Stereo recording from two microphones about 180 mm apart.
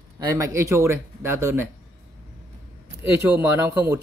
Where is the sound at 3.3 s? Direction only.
10° right (ahead or behind).